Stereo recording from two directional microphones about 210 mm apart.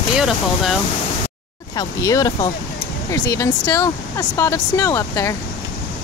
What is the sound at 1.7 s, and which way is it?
Speech, 15° left (ahead or behind).